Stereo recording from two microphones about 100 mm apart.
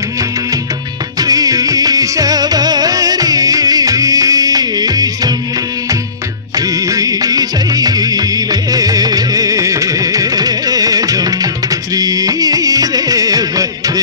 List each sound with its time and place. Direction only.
1.2 s music: 40° right (ahead or behind)
6.6 s music: 35° right (ahead or behind)